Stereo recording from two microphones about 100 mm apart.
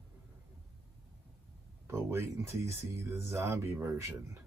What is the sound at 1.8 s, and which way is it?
Speech, 30° right (ahead or behind).